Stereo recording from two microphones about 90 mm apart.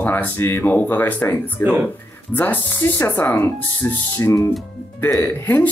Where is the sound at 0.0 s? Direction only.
20° left (ahead or behind).